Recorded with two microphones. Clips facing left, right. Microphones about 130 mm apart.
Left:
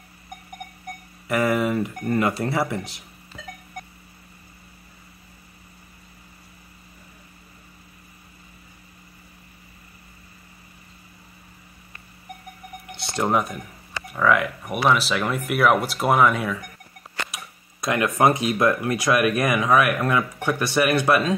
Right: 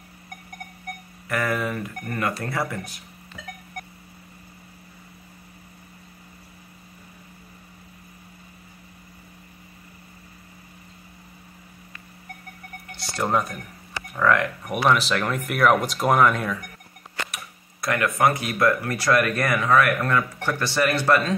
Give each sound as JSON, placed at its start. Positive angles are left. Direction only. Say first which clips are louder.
{"t": 1.3, "sound": "speech", "louder": "left 4 dB", "side_deg": 20}
{"t": 13.1, "sound": "speech", "louder": "left 2 dB", "side_deg": 15}
{"t": 17.3, "sound": "tick-tock", "louder": "even", "side_deg": 15}
{"t": 18.2, "sound": "speech", "louder": "left 2 dB", "side_deg": 20}